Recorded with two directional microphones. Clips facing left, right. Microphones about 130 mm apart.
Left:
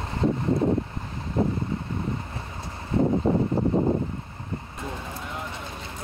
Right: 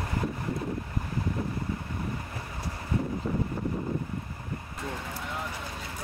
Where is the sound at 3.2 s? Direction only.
55° left (ahead or behind).